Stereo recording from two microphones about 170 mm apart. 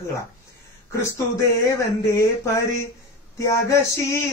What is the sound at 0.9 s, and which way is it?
Mantra, 15° left (ahead or behind).